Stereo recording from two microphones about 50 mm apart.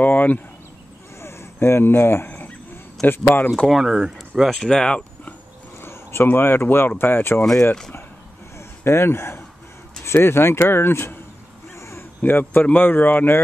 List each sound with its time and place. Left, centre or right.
0.0 s speech: left
1.2 s speech: left
2.2 s a sound: left
3.1 s speech: left
3.8 s speech: centre
4.5 s speech: centre
5.8 s a sound: left
6.3 s speech: left
8.5 s a sound: left
10.0 s speech: left
11.7 s a sound: left
12.2 s speech: left